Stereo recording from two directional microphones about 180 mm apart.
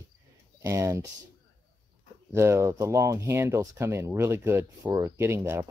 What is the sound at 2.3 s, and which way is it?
Speech, 15° right (ahead or behind).